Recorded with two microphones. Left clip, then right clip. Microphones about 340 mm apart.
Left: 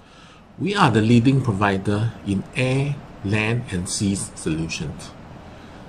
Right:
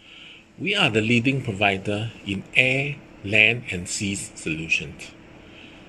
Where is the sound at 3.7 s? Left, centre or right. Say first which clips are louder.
Left 2 dB; centre.